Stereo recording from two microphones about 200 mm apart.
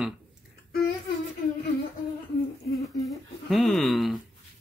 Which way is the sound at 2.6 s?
Centre (ahead or behind).